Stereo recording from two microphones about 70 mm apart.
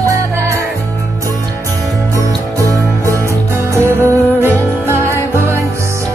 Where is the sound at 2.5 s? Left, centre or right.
Right.